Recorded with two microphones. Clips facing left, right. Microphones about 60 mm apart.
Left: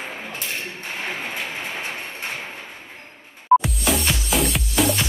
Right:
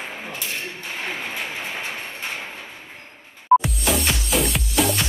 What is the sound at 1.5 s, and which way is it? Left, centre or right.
Train, left.